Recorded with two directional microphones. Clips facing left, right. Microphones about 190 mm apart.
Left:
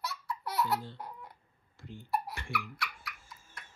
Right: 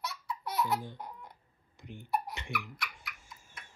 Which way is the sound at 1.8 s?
15° right (ahead or behind).